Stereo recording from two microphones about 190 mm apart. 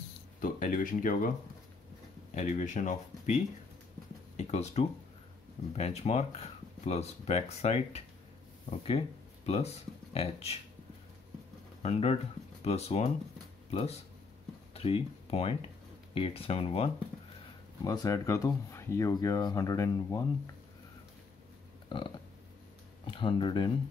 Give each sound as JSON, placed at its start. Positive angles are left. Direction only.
{"t": 0.4, "sound": "speech", "side_deg": 45}
{"t": 2.3, "sound": "speech", "side_deg": 40}
{"t": 10.1, "sound": "speech", "side_deg": 30}
{"t": 11.8, "sound": "speech", "side_deg": 35}
{"t": 17.8, "sound": "speech", "side_deg": 20}
{"t": 21.8, "sound": "a sound", "side_deg": 25}
{"t": 23.0, "sound": "speech", "side_deg": 25}